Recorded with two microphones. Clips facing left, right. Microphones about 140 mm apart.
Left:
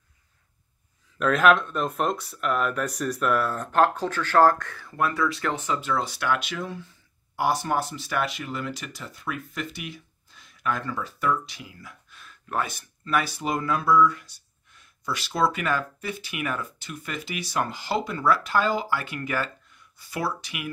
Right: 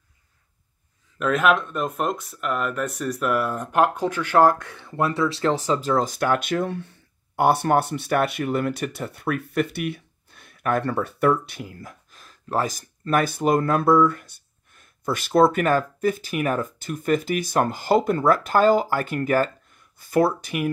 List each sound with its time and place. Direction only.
1.1 s speech: centre (ahead or behind); by 20.7 s 45° right (ahead or behind)